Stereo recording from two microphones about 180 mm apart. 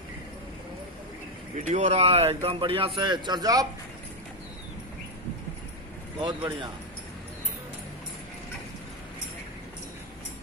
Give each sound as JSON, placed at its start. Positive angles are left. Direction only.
{"t": 1.7, "sound": "a man's voice", "side_deg": -35}
{"t": 6.1, "sound": "a man's voice", "side_deg": -25}